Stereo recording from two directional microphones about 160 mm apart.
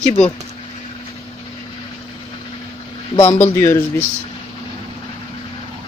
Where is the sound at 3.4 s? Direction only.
15° left (ahead or behind).